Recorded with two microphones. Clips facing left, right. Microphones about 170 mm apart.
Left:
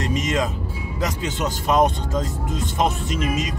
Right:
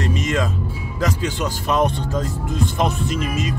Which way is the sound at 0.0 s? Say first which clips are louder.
Right 1 dB; 20° left (ahead or behind).